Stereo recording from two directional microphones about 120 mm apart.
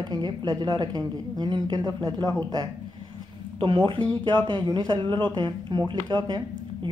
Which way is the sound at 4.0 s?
10° left (ahead or behind).